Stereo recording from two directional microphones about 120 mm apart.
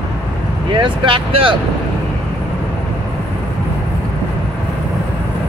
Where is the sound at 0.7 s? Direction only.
45° right (ahead or behind).